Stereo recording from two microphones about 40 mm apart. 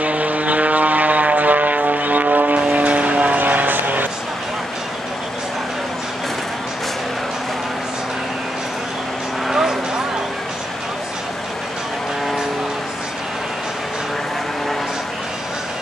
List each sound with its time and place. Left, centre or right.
0.0 s vehicle: right
9.5 s vehicle: centre